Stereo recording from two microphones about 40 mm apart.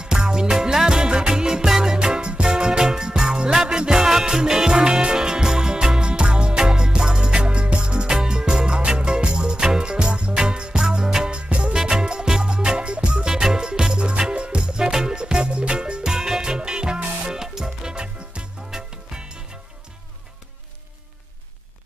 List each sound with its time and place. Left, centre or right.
0.0 s music: centre